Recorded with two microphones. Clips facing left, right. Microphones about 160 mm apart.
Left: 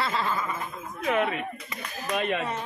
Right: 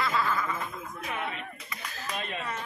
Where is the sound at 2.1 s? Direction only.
75° left (ahead or behind).